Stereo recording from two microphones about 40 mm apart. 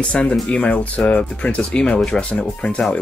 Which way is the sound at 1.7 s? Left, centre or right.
Left.